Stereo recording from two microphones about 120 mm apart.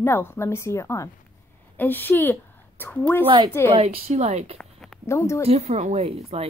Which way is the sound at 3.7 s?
50° right (ahead or behind).